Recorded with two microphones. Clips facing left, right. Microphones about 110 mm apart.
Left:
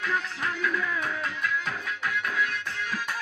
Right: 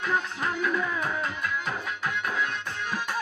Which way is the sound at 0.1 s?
25° right (ahead or behind).